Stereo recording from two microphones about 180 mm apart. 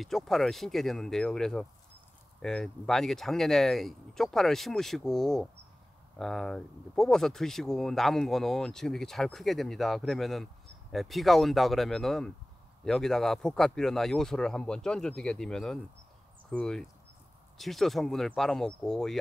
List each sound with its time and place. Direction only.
0.0 s speech: centre (ahead or behind)